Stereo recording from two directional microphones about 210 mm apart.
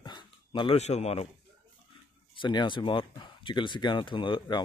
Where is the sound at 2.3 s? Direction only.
20° left (ahead or behind).